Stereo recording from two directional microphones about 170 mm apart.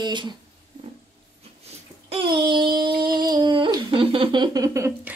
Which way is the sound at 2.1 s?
30° right (ahead or behind).